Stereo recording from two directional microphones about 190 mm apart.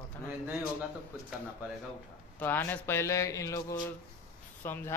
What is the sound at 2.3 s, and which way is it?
Speech, 10° left (ahead or behind).